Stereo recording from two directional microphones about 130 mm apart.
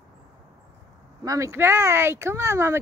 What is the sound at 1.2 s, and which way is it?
Speech, 25° right (ahead or behind).